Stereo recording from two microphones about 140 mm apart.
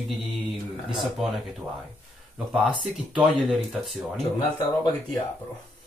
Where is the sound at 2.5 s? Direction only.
5° right (ahead or behind).